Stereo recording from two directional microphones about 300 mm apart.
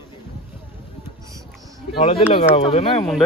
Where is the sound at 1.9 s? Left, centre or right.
Centre.